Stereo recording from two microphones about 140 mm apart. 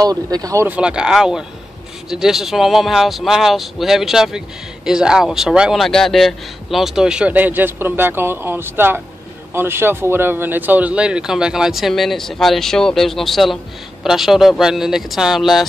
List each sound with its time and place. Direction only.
0.0 s speech: 25° right (ahead or behind)
0.7 s a man's voice: 5° right (ahead or behind)